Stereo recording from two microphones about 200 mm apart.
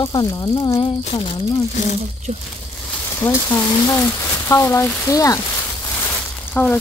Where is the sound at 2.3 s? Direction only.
30° right (ahead or behind).